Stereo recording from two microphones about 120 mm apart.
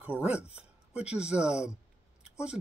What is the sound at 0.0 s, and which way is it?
Speech, 10° right (ahead or behind).